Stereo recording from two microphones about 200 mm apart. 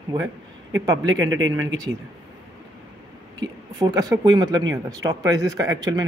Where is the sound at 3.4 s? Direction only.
20° right (ahead or behind).